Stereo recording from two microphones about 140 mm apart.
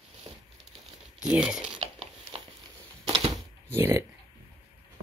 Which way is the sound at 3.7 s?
15° right (ahead or behind).